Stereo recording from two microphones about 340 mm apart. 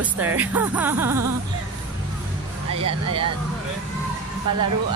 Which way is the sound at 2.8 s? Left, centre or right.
Centre.